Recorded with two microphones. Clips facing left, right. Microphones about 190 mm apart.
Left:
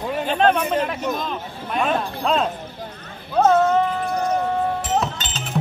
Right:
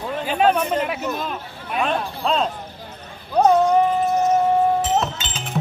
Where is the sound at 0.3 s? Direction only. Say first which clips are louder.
Even; 10° right (ahead or behind).